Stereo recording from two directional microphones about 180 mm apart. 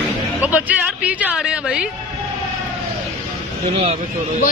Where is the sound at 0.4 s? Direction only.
5° right (ahead or behind).